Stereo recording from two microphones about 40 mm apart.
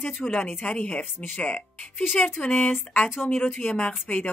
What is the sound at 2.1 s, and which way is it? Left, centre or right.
Speech, centre.